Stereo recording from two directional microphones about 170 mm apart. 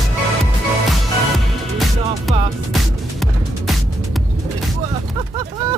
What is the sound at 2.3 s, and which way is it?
Music, centre (ahead or behind).